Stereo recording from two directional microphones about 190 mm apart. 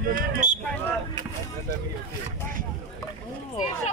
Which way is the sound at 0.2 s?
40° right (ahead or behind).